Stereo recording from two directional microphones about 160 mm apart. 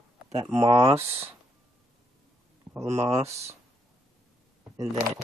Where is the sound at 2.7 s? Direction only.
20° right (ahead or behind).